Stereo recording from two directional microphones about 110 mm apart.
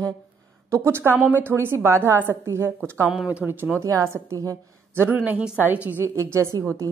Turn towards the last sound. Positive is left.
turn(degrees=-25)  # may be behind; listen again after turning